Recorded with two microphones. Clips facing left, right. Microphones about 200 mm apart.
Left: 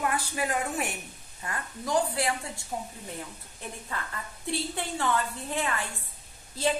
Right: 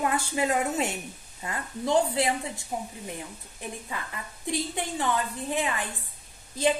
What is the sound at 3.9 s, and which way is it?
A woman's voice, 15° right (ahead or behind).